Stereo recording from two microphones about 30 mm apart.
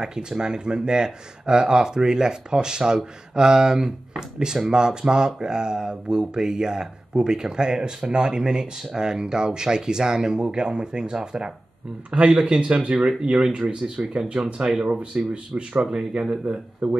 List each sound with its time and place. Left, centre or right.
0.0 s speech: right
12.4 s speech: right
13.7 s speech: right
15.3 s speech: right
15.8 s speech: right